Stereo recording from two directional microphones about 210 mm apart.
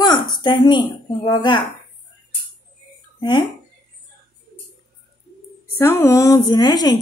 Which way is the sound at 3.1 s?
20° left (ahead or behind).